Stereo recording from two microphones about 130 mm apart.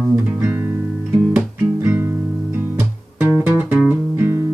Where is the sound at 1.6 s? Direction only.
15° right (ahead or behind).